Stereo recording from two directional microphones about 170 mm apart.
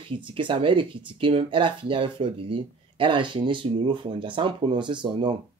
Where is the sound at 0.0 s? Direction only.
30° right (ahead or behind).